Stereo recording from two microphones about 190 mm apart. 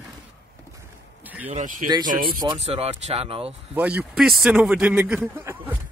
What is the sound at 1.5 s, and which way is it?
Speech, 40° right (ahead or behind).